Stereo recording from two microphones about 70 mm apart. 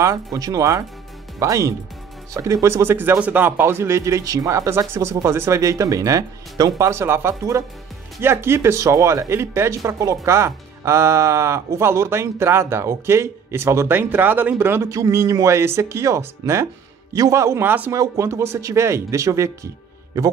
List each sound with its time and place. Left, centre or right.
0.0 s speech: right
3.2 s speech: right
4.6 s speech: right
6.9 s speech: right
14.9 s speech: right
17.6 s speech: right
18.1 s speech: right